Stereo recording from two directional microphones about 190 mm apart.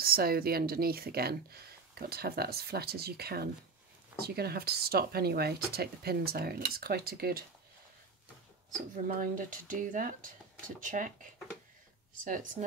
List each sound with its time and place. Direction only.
0.0 s speech: 50° right (ahead or behind)
9.0 s speech: 45° right (ahead or behind)